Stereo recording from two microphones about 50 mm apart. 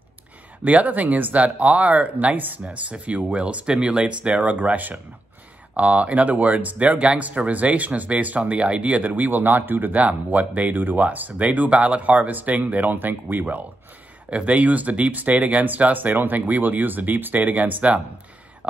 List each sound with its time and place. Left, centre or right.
0.7 s speech: right